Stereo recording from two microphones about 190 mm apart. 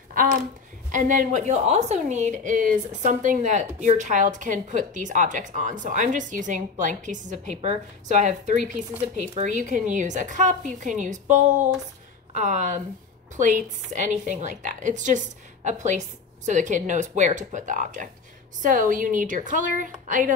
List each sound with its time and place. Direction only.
0.1 s a woman's voice: 45° right (ahead or behind)